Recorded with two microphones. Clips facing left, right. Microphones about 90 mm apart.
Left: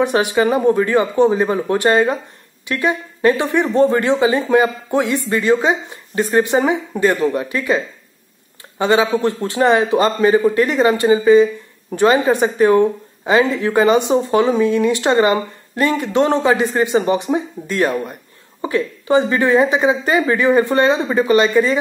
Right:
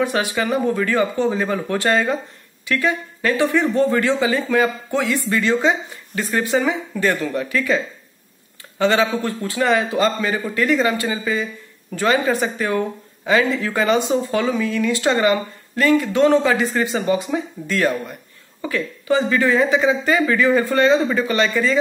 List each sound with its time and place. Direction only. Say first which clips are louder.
0.0 s speech: left 5 dB; 20° left (ahead or behind)